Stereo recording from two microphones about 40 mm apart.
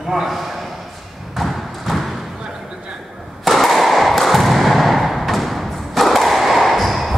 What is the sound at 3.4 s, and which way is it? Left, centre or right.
Thump, centre.